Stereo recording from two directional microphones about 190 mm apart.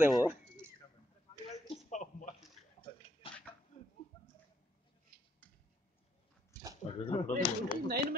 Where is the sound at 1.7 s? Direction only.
40° left (ahead or behind).